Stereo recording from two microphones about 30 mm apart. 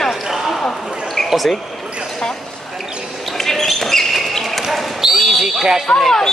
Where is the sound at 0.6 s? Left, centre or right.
Centre.